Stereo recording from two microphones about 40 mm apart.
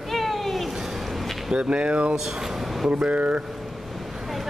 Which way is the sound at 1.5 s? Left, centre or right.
Right.